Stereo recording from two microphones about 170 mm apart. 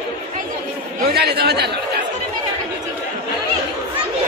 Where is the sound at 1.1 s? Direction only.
70° right (ahead or behind).